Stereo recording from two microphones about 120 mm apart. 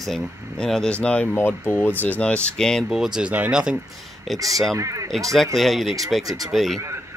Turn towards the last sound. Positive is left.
turn(degrees=0)  # may be behind; listen again after turning